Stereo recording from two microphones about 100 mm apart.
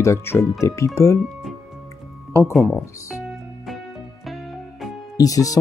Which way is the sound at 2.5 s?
Centre (ahead or behind).